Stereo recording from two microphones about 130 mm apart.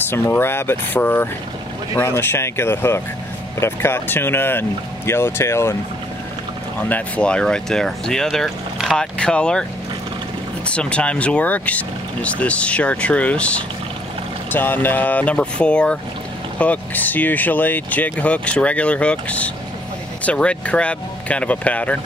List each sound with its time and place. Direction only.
0.0 s speech: 15° left (ahead or behind)
6.8 s speech: 10° left (ahead or behind)
10.7 s speech: 10° left (ahead or behind)